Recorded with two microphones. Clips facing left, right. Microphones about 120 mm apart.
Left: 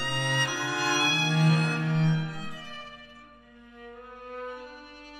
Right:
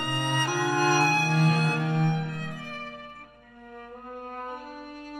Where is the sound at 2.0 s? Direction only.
55° right (ahead or behind).